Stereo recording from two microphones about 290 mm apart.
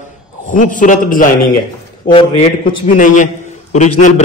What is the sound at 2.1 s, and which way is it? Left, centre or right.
A man's voice, centre.